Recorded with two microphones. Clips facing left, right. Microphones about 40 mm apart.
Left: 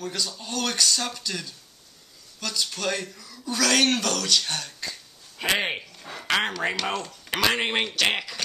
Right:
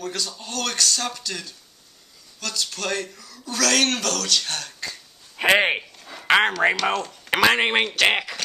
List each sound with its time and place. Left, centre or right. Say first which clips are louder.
0.0 s speech: right 1 dB; centre
5.4 s speech: right 7 dB; right
6.2 s a sound: right 7 dB; right
6.8 s speech: right 5 dB; centre
7.2 s speech: right 6 dB; right